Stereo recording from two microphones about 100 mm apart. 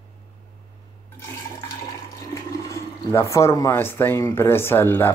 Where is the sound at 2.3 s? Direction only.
30° left (ahead or behind).